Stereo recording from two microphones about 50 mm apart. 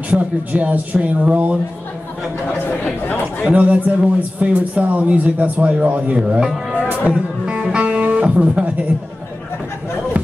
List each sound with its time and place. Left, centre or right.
0.1 s speech: right
2.8 s speech: left
3.5 s speech: right
6.4 s a man's voice: centre
6.8 s music: right
7.5 s music: centre